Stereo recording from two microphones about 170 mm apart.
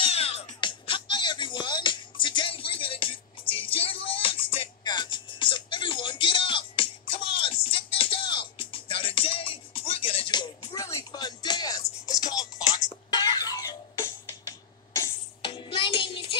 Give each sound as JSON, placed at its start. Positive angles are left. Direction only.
{"t": 0.0, "sound": "music", "side_deg": 35}
{"t": 15.4, "sound": "music", "side_deg": 30}